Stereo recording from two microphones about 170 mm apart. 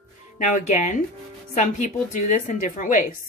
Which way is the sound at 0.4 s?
45° left (ahead or behind).